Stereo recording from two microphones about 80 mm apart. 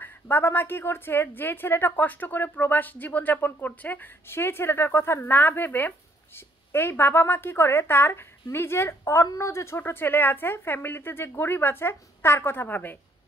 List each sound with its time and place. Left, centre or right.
0.0 s a woman's voice: left